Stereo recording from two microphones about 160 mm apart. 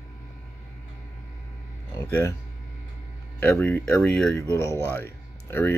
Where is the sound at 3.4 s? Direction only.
10° left (ahead or behind).